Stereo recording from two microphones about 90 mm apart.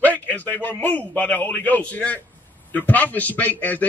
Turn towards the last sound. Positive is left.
turn(degrees=15)  # may be behind; listen again after turning